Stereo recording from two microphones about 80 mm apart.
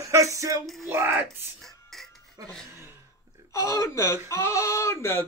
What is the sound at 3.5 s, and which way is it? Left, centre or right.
Speech, left.